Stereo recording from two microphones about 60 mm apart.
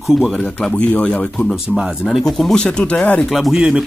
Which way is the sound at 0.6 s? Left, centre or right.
Centre.